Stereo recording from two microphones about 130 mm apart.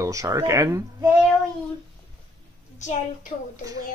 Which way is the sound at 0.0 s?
25° right (ahead or behind).